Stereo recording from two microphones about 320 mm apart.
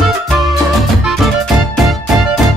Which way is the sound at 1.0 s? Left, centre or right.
Centre.